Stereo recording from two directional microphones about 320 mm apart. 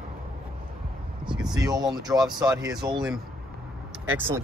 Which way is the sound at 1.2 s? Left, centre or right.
Centre.